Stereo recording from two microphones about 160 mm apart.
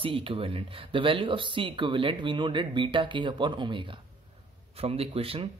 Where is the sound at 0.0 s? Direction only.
35° right (ahead or behind).